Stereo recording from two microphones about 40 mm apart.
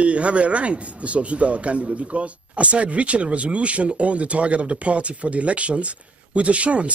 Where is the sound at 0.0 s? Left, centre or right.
Right.